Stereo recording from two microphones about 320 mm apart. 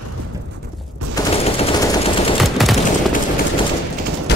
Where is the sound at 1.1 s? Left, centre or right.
Centre.